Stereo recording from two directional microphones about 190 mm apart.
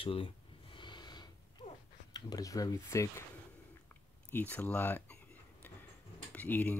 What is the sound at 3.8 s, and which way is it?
Chewing, 10° left (ahead or behind).